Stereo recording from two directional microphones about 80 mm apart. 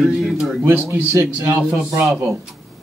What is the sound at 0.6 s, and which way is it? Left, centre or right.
A man's voice, right.